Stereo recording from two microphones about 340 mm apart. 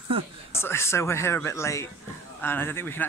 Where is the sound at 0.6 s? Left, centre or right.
Centre.